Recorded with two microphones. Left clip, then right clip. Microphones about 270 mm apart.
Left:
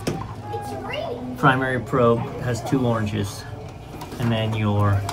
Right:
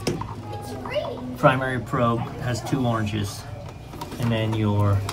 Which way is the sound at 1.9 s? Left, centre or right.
Centre.